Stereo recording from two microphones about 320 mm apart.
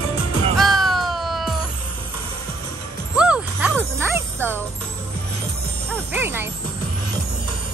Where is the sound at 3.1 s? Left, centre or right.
Centre.